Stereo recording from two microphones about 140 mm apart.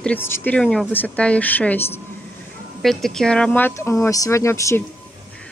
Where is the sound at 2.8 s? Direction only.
Centre (ahead or behind); by 4.8 s 20° left (ahead or behind).